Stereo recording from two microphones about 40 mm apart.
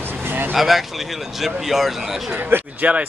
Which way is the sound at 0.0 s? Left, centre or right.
Right.